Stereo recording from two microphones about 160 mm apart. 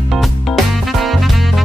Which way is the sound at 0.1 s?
Centre (ahead or behind).